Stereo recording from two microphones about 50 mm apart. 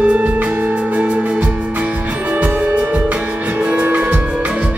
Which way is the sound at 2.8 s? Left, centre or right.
Right.